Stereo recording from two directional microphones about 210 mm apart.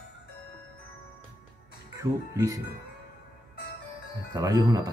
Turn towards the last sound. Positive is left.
turn(degrees=-15)  # may be behind; listen again after turning